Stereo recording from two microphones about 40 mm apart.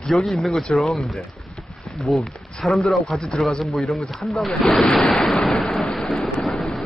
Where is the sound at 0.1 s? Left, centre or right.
Centre.